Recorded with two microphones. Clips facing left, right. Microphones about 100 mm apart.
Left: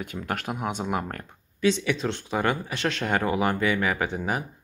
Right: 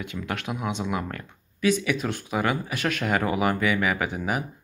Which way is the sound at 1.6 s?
25° left (ahead or behind).